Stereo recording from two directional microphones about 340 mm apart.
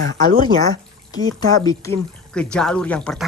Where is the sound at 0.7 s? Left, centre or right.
Centre.